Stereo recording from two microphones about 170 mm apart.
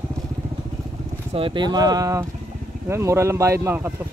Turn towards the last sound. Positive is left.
turn(degrees=-15)  # may be behind; listen again after turning